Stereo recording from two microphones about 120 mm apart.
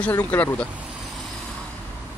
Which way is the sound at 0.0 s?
15° left (ahead or behind).